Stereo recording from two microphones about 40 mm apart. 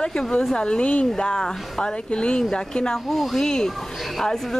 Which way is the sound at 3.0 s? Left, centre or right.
Centre.